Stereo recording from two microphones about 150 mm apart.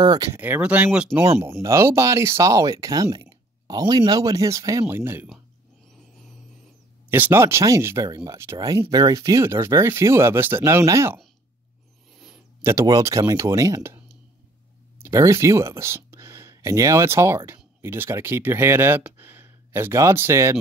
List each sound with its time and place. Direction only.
0.0 s speech: 25° right (ahead or behind)
0.4 s speech: 10° right (ahead or behind)
7.1 s speech: 15° right (ahead or behind)
12.6 s speech: 20° right (ahead or behind)